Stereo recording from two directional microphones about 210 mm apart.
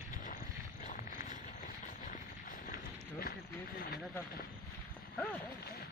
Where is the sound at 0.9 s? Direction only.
35° left (ahead or behind).